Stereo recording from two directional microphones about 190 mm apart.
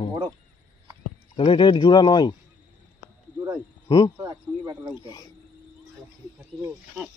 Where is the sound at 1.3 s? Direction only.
25° left (ahead or behind).